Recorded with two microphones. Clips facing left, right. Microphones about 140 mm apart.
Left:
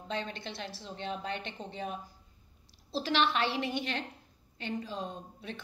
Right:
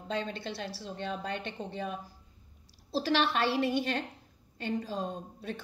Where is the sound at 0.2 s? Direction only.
45° right (ahead or behind).